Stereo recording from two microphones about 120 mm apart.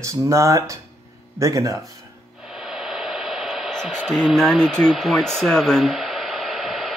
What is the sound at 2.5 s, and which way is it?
Radio, 5° right (ahead or behind).